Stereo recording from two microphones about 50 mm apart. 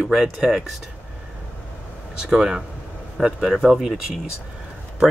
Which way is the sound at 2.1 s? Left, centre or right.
Centre.